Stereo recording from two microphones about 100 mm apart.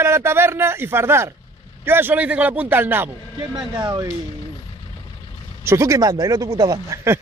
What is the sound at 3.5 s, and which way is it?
Speech, 45° right (ahead or behind).